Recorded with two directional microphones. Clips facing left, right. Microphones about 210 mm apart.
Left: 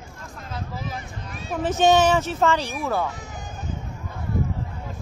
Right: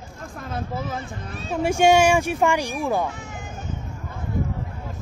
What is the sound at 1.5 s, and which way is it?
Speech, 10° right (ahead or behind).